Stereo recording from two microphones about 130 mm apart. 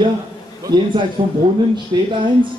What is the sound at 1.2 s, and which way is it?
Speech, 40° right (ahead or behind).